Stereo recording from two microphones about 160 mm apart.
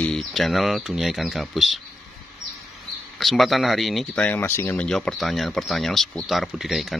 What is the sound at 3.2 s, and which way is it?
Speech, centre (ahead or behind).